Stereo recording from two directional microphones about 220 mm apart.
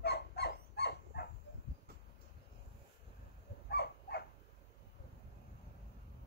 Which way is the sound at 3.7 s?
50° left (ahead or behind).